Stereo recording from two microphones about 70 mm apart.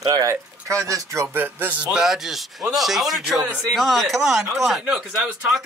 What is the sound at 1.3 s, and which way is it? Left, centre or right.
Speech, right.